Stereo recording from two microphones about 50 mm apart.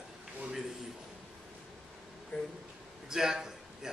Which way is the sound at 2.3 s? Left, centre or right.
Centre.